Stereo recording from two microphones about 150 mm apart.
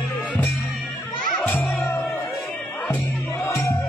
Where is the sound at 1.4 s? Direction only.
10° left (ahead or behind).